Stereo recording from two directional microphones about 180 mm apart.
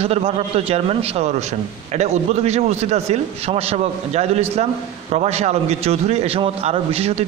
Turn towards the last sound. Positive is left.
turn(degrees=-35)  # may be behind; listen again after turning